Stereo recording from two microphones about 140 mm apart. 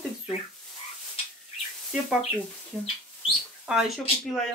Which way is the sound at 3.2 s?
Centre (ahead or behind).